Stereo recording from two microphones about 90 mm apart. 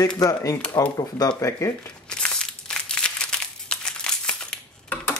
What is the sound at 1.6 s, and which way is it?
Speech, 40° left (ahead or behind).